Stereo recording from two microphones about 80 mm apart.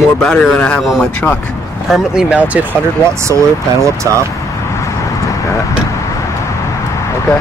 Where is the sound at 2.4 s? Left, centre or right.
Centre.